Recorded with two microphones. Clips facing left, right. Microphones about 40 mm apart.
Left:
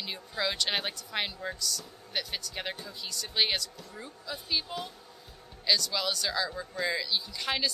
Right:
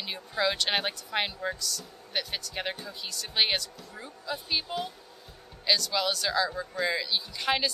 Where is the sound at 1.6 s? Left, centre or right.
Centre.